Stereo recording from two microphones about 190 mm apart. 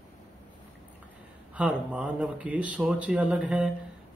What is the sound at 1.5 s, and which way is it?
Speech, 5° right (ahead or behind).